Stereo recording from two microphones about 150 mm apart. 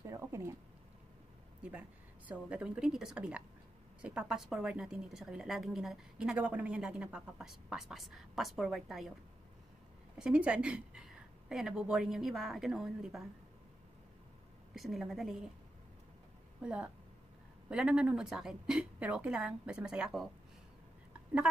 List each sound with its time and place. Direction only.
0.0 s a sound: 20° right (ahead or behind)
1.6 s a woman's voice: 10° right (ahead or behind)
10.1 s a woman's voice: 5° right (ahead or behind)
14.8 s a woman's voice: centre (ahead or behind)
16.6 s a woman's voice: 5° right (ahead or behind)